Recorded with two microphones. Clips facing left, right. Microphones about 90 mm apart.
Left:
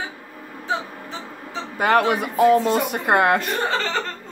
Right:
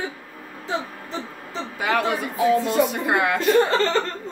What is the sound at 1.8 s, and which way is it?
Speech, 50° left (ahead or behind).